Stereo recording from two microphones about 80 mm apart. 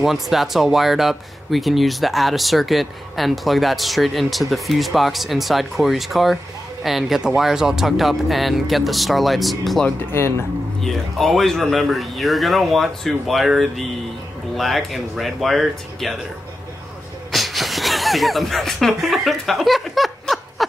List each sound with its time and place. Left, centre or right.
0.0 s speech: centre
17.3 s speech: centre